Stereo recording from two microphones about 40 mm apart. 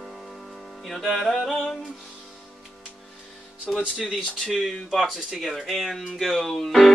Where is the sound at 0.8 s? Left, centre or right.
Centre.